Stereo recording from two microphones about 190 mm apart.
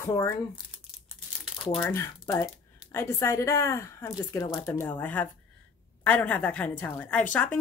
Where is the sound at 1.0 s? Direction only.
5° right (ahead or behind).